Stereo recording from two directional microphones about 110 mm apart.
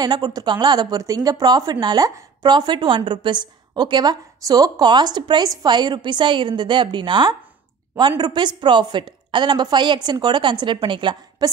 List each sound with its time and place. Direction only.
0.0 s a woman's voice: 40° right (ahead or behind)